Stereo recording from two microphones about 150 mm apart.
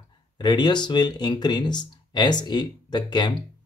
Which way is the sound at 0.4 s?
30° left (ahead or behind).